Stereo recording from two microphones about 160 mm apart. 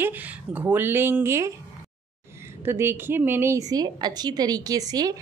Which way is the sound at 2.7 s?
15° right (ahead or behind).